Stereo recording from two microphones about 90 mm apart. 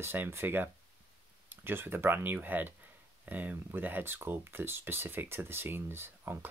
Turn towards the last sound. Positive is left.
turn(degrees=-25)  # may be behind; listen again after turning